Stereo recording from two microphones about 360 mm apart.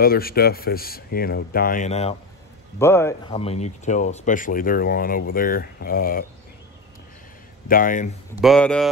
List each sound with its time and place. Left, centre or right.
0.0 s speech: left
2.8 s speech: centre; by 6.2 s left
7.6 s speech: left
8.4 s speech: centre